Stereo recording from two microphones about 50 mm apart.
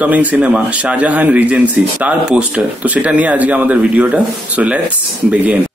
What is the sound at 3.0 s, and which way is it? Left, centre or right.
Speech, right.